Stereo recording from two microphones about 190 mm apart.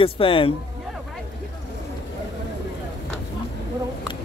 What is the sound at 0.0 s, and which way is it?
Speech, 30° left (ahead or behind).